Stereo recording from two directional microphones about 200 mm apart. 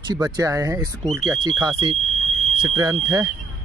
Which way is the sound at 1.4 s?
25° right (ahead or behind).